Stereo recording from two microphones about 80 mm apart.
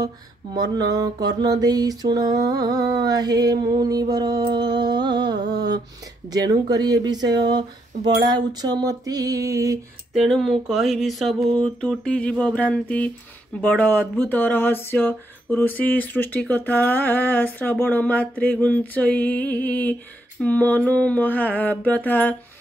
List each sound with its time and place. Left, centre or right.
0.0 s music: right
6.3 s music: right
10.1 s a sound: centre
13.6 s speech: left